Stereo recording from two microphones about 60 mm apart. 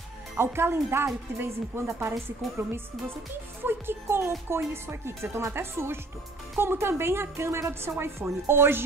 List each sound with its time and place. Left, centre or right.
0.4 s a woman's voice: right
3.6 s a woman's voice: right